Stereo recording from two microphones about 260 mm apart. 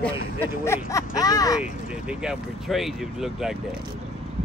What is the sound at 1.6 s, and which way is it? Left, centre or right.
Speech, centre.